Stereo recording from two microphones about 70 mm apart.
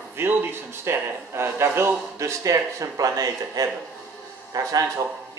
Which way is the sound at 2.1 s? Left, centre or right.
Right.